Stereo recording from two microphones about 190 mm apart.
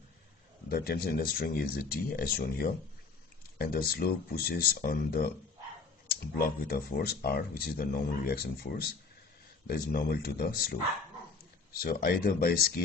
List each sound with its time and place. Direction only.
0.7 s speech: 50° left (ahead or behind)
11.8 s speech: 50° left (ahead or behind)